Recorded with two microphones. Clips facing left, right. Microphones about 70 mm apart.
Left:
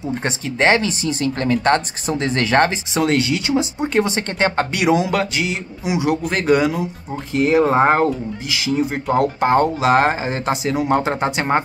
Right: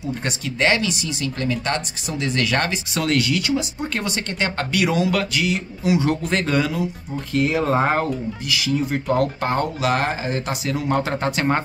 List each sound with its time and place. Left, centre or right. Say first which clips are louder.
0.2 s speech: left 3 dB; left; by 6.5 s centre
6.5 s speech: left 5 dB; centre